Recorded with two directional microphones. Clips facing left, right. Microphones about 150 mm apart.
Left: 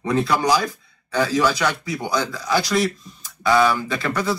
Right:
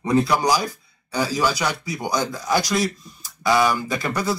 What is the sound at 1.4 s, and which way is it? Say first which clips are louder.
Speech: left 2 dB; 10° right (ahead or behind).